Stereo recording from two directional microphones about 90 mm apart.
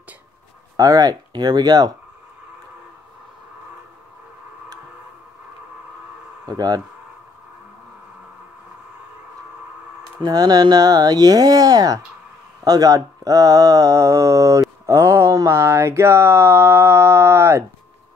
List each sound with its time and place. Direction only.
0.7 s speech: 40° right (ahead or behind)
6.4 s speech: 45° right (ahead or behind)
10.2 s speech: 45° right (ahead or behind); by 17.6 s 30° right (ahead or behind)